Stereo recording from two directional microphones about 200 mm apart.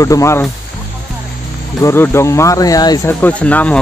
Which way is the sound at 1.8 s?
15° left (ahead or behind).